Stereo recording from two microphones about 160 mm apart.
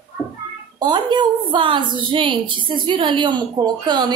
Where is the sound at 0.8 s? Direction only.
30° right (ahead or behind).